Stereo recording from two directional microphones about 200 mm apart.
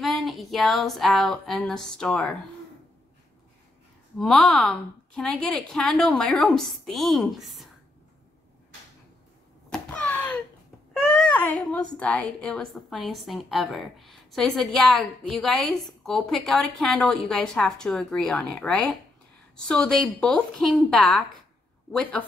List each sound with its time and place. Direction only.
0.0 s a woman's voice: centre (ahead or behind)
4.2 s a woman's voice: centre (ahead or behind)
9.7 s a sound: 5° left (ahead or behind)
10.9 s a woman's voice: 5° left (ahead or behind)